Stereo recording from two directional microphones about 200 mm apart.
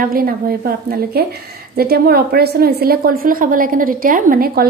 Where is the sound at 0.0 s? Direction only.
45° right (ahead or behind).